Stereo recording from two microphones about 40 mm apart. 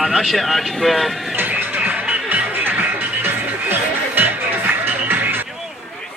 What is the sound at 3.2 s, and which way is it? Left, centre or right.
Music, right.